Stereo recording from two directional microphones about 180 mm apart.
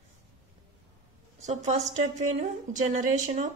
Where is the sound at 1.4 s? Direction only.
40° right (ahead or behind).